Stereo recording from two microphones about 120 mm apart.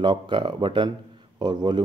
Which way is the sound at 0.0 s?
40° right (ahead or behind).